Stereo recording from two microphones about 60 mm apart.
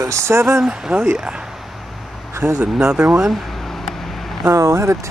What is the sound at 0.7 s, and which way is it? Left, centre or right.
Speech, centre.